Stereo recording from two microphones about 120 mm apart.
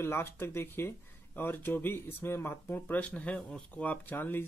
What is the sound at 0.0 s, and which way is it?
Speech, 20° left (ahead or behind).